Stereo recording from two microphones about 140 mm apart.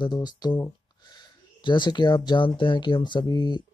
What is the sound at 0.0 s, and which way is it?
Speech, 30° left (ahead or behind).